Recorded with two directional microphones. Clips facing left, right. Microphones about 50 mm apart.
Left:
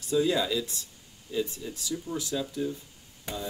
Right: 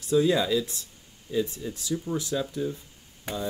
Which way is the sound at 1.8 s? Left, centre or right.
Right.